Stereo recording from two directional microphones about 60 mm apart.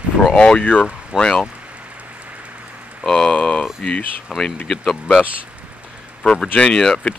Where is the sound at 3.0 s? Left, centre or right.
Centre.